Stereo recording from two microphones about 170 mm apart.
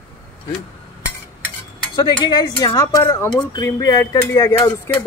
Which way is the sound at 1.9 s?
25° left (ahead or behind).